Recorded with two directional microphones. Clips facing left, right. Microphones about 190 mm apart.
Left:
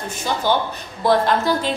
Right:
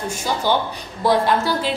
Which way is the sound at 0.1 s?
10° right (ahead or behind).